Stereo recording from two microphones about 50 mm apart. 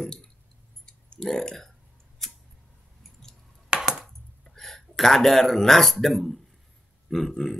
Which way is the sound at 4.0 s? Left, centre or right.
Centre.